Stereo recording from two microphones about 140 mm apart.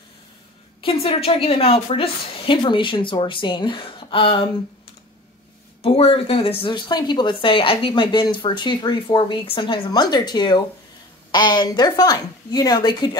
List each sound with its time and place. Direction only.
0.7 s speech: 40° left (ahead or behind)
5.8 s speech: 45° left (ahead or behind)